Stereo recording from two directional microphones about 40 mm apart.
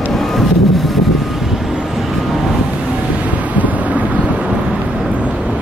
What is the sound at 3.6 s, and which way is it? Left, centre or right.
Thunder, right.